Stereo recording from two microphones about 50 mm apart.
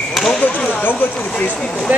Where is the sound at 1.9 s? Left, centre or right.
Right.